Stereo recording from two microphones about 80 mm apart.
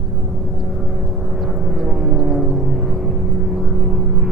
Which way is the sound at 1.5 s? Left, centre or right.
Centre.